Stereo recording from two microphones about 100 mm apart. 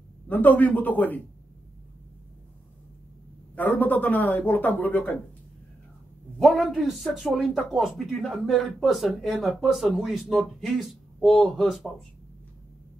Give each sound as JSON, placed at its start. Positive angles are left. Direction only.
{"t": 0.3, "sound": "a man's voice", "side_deg": 15}
{"t": 3.5, "sound": "a man's voice", "side_deg": 15}
{"t": 6.4, "sound": "speech", "side_deg": 0}